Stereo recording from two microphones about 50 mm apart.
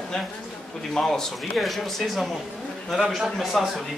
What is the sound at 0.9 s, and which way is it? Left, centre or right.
Speech, centre.